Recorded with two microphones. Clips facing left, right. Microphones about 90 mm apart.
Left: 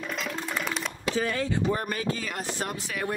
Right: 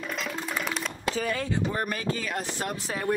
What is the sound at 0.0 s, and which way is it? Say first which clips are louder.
Music: even; centre (ahead or behind).